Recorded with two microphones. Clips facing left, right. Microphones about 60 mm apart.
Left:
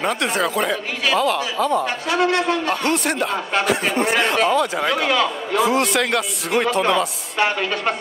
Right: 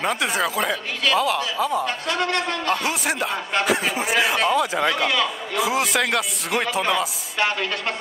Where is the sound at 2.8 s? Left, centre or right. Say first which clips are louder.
Left 4 dB; centre.